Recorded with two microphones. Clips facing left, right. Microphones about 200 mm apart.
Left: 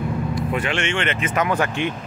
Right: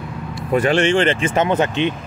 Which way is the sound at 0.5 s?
40° right (ahead or behind).